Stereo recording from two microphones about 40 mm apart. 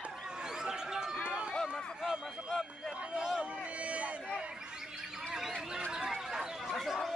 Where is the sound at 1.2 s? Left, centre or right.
Right.